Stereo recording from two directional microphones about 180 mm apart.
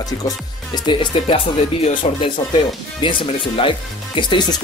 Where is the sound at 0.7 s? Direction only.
25° left (ahead or behind).